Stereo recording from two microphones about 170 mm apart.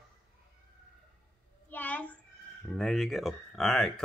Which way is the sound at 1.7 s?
10° left (ahead or behind).